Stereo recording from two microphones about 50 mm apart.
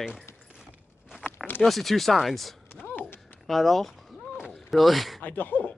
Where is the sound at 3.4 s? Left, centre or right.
Centre.